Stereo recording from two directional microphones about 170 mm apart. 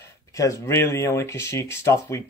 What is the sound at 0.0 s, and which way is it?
Speech, 20° left (ahead or behind).